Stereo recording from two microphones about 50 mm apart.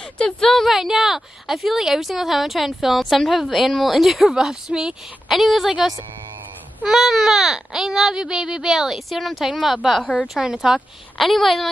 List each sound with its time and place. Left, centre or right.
0.0 s speech: centre
0.7 s speech: centre
5.3 s speech: centre
11.1 s speech: centre